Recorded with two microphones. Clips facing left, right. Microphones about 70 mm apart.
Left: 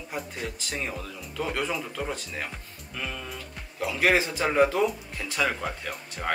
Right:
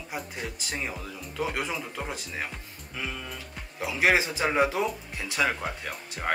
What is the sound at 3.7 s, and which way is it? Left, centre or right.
Speech, centre.